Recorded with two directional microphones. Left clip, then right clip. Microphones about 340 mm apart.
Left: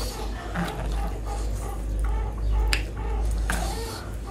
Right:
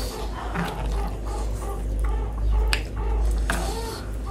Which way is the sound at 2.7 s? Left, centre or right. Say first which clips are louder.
Right 1 dB; centre.